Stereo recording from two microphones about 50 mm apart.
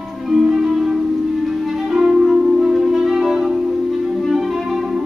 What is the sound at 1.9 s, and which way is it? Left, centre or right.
Music, centre.